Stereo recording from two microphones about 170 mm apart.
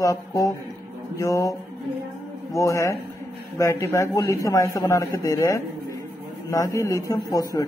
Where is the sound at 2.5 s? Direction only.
20° left (ahead or behind).